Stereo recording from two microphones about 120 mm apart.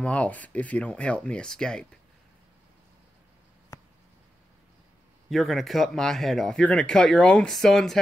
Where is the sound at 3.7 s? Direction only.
30° left (ahead or behind).